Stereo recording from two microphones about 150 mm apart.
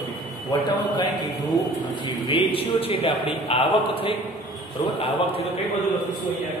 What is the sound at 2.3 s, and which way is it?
A man's voice, 40° left (ahead or behind).